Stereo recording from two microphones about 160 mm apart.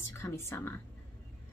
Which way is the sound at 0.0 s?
15° left (ahead or behind).